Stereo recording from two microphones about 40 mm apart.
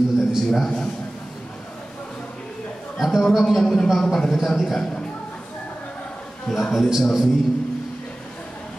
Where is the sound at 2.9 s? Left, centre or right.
Centre.